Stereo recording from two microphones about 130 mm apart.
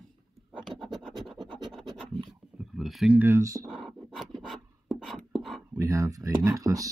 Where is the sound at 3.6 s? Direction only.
5° left (ahead or behind).